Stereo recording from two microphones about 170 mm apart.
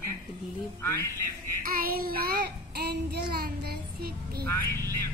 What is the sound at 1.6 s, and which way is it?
Child singing, 60° right (ahead or behind).